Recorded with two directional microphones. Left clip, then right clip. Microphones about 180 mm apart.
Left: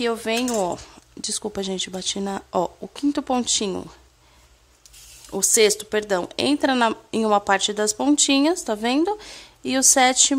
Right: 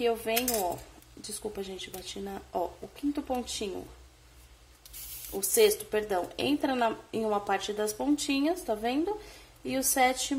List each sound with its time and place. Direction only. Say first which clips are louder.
0.0 s a woman's voice: left 5 dB; 55° left (ahead or behind)
5.4 s a woman's voice: left 6 dB; 50° left (ahead or behind)